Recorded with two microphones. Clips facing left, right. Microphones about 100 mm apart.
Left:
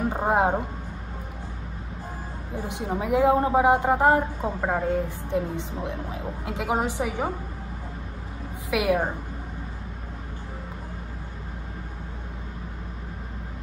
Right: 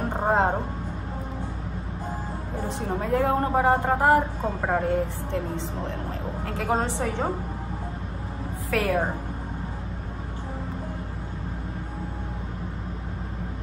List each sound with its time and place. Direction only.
0.1 s a woman's voice: 5° left (ahead or behind)
2.9 s a woman's voice: 15° left (ahead or behind)
4.6 s a woman's voice: centre (ahead or behind)
5.3 s a woman's voice: 15° left (ahead or behind)
8.6 s a woman's voice: 15° left (ahead or behind)